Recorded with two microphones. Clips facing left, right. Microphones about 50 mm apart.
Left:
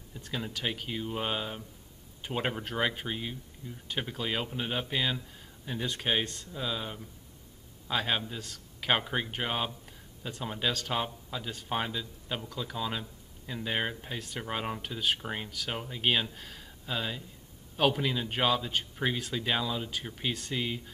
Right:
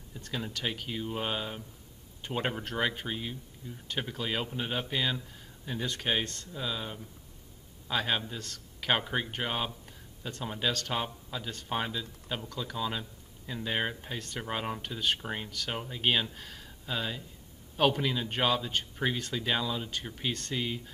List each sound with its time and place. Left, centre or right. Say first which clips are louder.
0.1 s speech: even; centre